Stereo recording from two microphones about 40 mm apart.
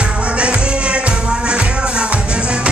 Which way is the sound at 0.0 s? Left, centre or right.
Right.